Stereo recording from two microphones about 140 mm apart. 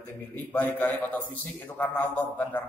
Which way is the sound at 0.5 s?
10° left (ahead or behind).